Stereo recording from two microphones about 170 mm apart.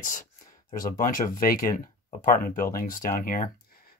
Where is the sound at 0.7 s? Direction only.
50° left (ahead or behind).